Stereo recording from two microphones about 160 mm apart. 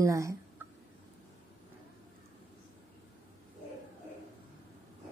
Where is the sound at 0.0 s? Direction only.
20° right (ahead or behind).